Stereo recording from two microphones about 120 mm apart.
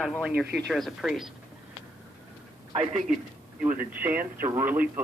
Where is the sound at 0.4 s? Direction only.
Centre (ahead or behind).